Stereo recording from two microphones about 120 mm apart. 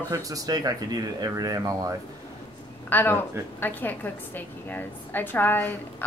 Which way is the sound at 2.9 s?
15° left (ahead or behind).